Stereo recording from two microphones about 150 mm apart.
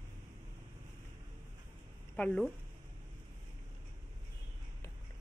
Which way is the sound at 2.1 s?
10° left (ahead or behind).